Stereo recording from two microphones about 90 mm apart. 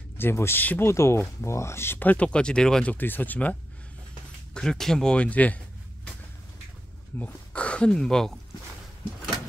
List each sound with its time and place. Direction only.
0.2 s speech: 25° left (ahead or behind)
4.6 s speech: 5° left (ahead or behind)
7.2 s speech: 15° left (ahead or behind)